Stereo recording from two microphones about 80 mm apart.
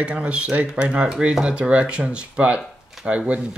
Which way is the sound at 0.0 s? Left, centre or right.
Centre.